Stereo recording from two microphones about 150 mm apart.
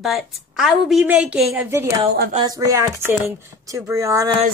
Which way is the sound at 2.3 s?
25° right (ahead or behind).